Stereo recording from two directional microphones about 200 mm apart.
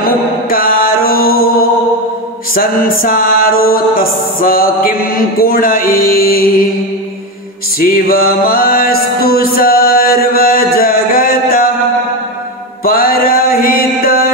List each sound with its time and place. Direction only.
0.0 s mantra: 45° left (ahead or behind)
2.5 s music: 45° left (ahead or behind)
7.8 s music: 45° left (ahead or behind)
12.8 s mantra: 50° left (ahead or behind)